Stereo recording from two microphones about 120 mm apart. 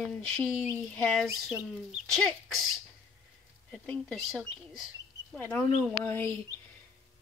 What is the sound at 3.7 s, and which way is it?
Speech, centre (ahead or behind).